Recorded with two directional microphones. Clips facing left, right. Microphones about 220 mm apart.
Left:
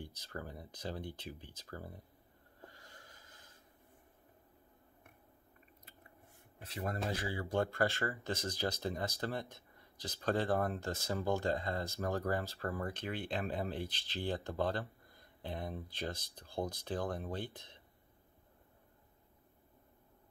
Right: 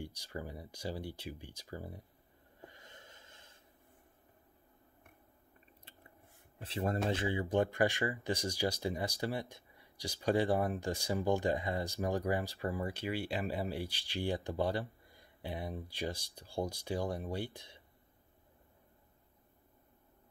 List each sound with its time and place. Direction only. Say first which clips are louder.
0.0 s speech: right 3 dB; 15° right (ahead or behind)
2.6 s wheeze: right 2 dB; 20° right (ahead or behind)
6.6 s speech: right 5 dB; 30° right (ahead or behind)
7.3 s speech: right 1 dB; 15° right (ahead or behind)